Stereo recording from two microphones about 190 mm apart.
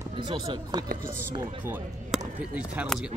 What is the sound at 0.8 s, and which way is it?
Speech, 45° right (ahead or behind).